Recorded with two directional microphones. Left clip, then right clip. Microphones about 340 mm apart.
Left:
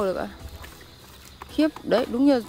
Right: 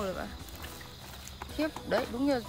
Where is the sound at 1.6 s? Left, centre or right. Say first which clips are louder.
Left 9 dB; left.